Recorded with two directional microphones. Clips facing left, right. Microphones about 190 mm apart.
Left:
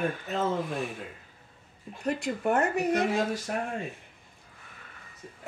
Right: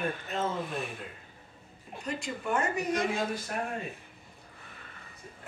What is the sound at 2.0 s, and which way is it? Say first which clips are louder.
Speech: left 7 dB; 60° left (ahead or behind).